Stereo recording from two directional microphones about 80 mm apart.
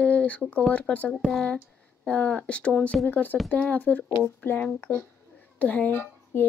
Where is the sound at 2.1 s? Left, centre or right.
Centre.